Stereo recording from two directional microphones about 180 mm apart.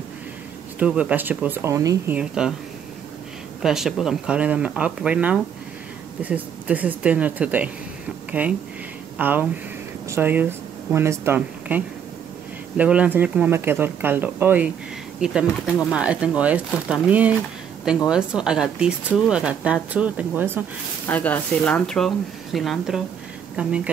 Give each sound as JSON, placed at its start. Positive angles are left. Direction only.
{"t": 0.7, "sound": "speech", "side_deg": -5}
{"t": 2.1, "sound": "speech", "side_deg": -5}
{"t": 3.6, "sound": "speech", "side_deg": 0}
{"t": 21.1, "sound": "speech", "side_deg": 10}